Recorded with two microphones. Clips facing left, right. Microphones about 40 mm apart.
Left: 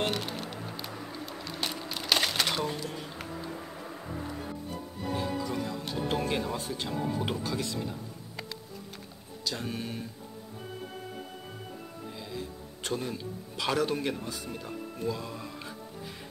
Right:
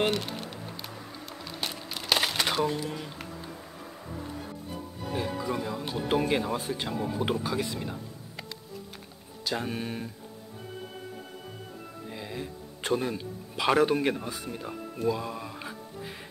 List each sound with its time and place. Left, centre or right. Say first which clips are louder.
0.1 s a sound: right 2 dB; centre
3.6 s vehicle: left 2 dB; centre
5.1 s speech: right 2 dB; centre
9.4 s speech: right 3 dB; centre
12.1 s speech: right 3 dB; right